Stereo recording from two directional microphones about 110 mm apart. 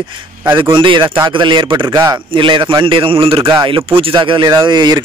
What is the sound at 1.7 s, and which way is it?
Speech, 25° right (ahead or behind).